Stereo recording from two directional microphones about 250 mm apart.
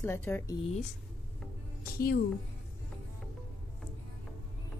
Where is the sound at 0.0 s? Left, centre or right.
Centre.